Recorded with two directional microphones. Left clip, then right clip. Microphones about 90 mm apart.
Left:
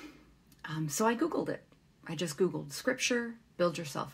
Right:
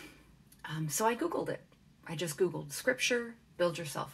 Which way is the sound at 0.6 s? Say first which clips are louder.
Left 1 dB; 20° left (ahead or behind).